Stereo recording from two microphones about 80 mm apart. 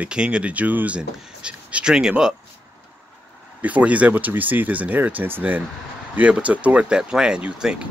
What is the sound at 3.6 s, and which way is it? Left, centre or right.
Speech, centre.